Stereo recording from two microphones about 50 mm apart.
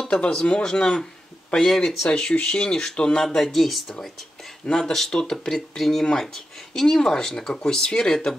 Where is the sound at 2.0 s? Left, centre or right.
Centre.